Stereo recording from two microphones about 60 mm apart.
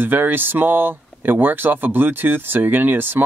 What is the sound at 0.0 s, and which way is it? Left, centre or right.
Speech, right.